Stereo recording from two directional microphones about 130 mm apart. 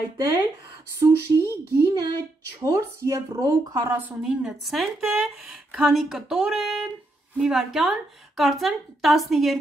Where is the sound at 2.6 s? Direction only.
25° right (ahead or behind).